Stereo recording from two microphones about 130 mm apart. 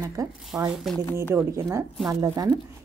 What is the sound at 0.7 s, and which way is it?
Speech, centre (ahead or behind).